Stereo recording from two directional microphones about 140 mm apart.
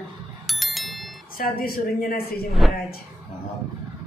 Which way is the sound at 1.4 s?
90° left.